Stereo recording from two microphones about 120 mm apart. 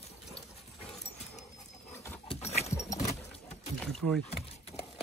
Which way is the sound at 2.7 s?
25° left (ahead or behind).